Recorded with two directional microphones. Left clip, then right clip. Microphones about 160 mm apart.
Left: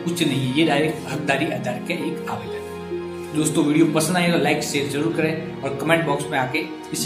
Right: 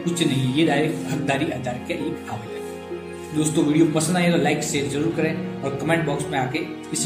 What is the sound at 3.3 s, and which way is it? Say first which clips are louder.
Speech: left 1 dB; 20° right (ahead or behind).